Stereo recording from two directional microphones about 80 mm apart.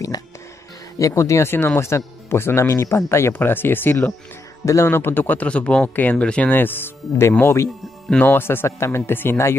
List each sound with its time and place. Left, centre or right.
0.9 s speech: left; by 6.5 s centre
6.5 s speech: left